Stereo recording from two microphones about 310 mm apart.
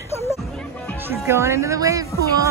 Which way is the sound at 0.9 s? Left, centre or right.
Centre.